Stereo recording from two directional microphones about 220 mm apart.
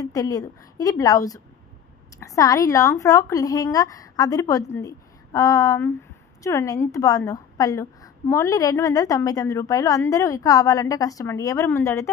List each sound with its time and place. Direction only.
0.0 s a woman's voice: 15° left (ahead or behind)